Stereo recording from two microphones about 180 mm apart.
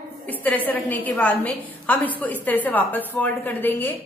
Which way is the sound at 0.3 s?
10° left (ahead or behind).